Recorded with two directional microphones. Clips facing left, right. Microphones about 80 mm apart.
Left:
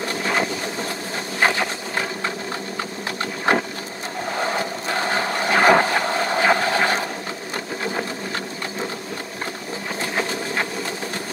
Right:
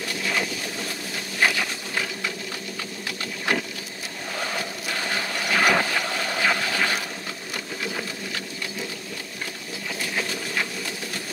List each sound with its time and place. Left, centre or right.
0.2 s a sound: left
2.8 s engine: left
4.4 s vehicle: left
7.5 s sewing machine: left
9.9 s engine: left